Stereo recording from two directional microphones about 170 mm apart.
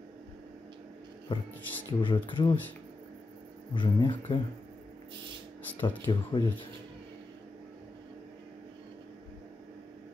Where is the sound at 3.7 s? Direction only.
30° left (ahead or behind).